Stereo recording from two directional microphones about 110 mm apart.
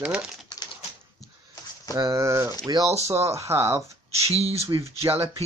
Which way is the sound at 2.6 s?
35° right (ahead or behind).